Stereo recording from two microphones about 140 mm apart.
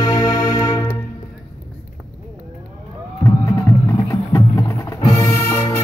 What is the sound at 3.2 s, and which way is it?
Music, 20° left (ahead or behind).